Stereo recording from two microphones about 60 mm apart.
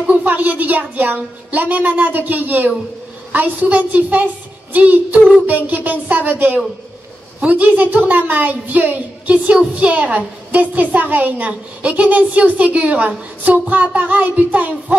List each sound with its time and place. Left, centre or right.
0.2 s a woman's voice: right